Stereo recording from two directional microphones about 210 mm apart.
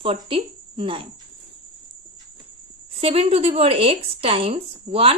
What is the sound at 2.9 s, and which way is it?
Speech, 25° right (ahead or behind).